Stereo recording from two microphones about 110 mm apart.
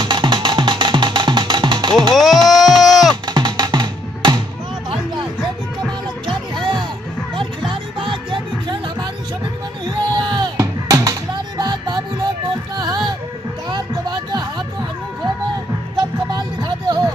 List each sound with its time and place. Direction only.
0.0 s music: 45° right (ahead or behind)
2.1 s a sound: centre (ahead or behind)
3.3 s music: 40° right (ahead or behind)
6.2 s music: 50° right (ahead or behind)
9.8 s a sound: 45° right (ahead or behind)
10.6 s music: 30° right (ahead or behind)
16.0 s music: 40° right (ahead or behind)